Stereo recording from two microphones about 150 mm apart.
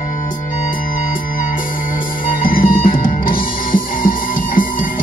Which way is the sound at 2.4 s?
70° left (ahead or behind).